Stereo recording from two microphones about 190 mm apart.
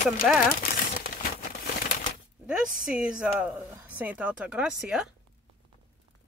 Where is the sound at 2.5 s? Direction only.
5° right (ahead or behind).